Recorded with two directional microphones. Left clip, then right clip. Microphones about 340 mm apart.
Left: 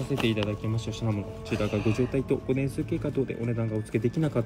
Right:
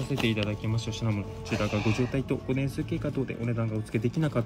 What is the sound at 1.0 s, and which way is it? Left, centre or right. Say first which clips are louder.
Speech: left 3 dB; centre.